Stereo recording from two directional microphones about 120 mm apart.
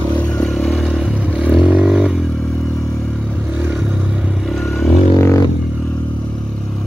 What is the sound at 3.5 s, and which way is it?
Vehicle, 10° right (ahead or behind).